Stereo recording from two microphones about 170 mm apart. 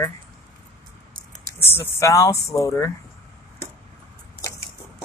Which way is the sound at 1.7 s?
15° left (ahead or behind).